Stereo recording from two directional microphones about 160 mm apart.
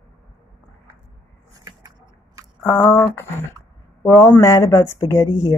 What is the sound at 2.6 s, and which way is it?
Speech, 10° left (ahead or behind).